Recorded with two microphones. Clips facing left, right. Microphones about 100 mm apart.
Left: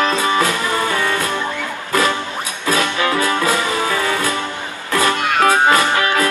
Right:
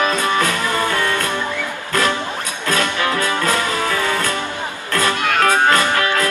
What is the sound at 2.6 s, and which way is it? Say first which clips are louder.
Music: left 2 dB; 5° left (ahead or behind).